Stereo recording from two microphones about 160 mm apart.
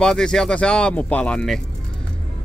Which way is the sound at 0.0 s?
5° left (ahead or behind).